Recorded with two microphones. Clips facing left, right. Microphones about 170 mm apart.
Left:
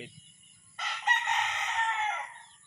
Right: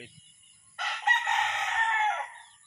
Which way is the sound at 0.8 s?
60° right (ahead or behind).